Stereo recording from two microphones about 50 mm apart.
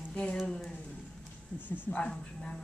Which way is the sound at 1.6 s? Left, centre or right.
Right.